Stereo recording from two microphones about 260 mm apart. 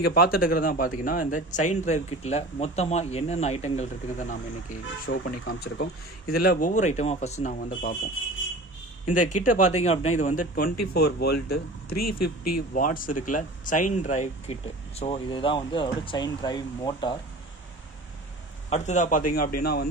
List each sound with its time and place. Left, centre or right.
0.0 s a man's voice: left
5.1 s a man's voice: left
9.1 s a man's voice: left
10.9 s speech: left
12.0 s speech: left
12.5 s a man's voice: left; by 17.2 s centre
18.7 s speech: left